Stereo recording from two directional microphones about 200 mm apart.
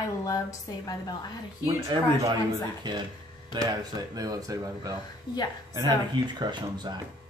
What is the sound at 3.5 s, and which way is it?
Speech, 20° right (ahead or behind).